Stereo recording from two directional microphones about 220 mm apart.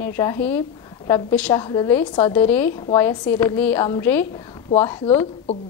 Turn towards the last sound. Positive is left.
turn(degrees=10)  # may be behind; listen again after turning